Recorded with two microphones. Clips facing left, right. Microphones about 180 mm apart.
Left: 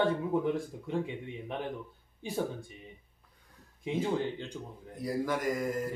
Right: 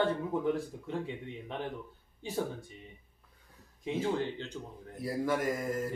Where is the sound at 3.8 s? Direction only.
15° left (ahead or behind).